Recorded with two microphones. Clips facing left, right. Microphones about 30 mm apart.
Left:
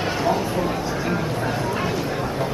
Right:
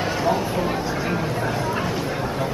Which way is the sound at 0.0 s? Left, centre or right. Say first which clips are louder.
Even; centre.